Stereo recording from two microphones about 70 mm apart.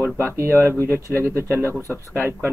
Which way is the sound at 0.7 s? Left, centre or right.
Left.